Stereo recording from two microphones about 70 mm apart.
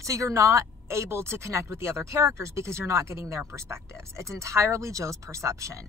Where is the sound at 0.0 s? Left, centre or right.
Right.